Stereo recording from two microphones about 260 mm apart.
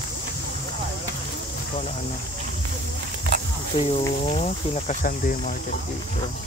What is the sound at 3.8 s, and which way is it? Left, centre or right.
Speech, left.